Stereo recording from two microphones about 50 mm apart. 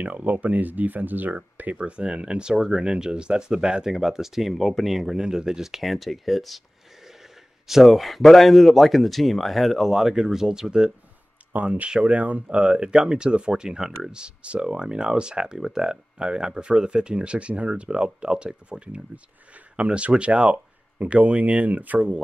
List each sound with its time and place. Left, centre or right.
0.0 s speech: right
1.8 s speech: right; by 6.6 s centre
7.6 s speech: centre
9.9 s speech: centre
11.5 s speech: right